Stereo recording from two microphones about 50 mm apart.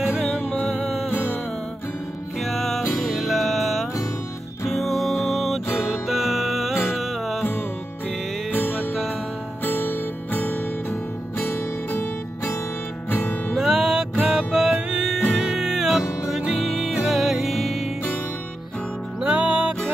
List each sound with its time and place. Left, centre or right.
0.7 s music: centre
2.4 s music: centre
8.5 s music: left
11.3 s music: left
13.1 s music: left
13.5 s music: centre
16.0 s music: left
16.3 s music: centre
19.2 s music: right